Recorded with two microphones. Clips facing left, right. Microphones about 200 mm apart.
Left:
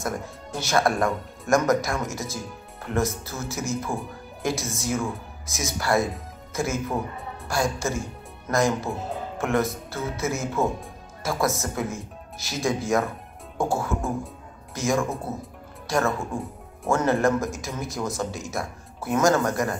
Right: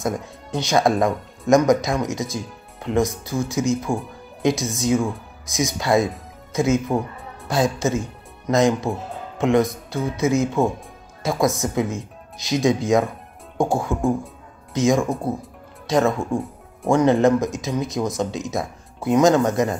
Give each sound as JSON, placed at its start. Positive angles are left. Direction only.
{"t": 0.0, "sound": "a woman's voice", "side_deg": -15}